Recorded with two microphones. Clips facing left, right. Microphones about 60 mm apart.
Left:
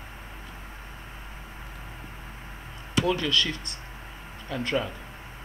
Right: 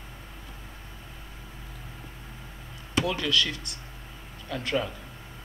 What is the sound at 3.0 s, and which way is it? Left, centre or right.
Speech, centre.